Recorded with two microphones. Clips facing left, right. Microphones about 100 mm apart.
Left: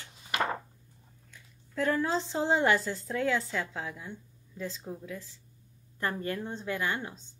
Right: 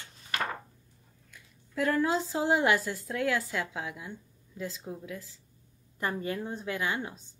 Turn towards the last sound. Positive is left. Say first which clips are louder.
# even
turn(degrees=-10)  # may be behind; listen again after turning